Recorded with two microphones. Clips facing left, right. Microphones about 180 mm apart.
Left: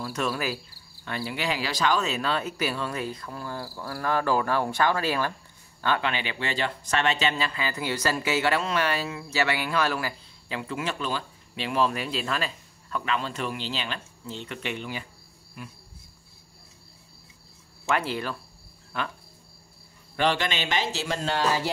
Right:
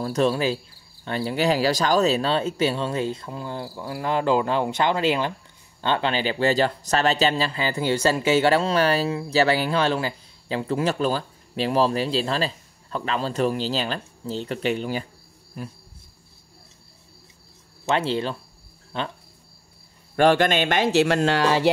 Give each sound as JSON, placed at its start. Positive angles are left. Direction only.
{"t": 0.0, "sound": "speech", "side_deg": -35}
{"t": 17.8, "sound": "speech", "side_deg": -25}
{"t": 20.2, "sound": "speech", "side_deg": -50}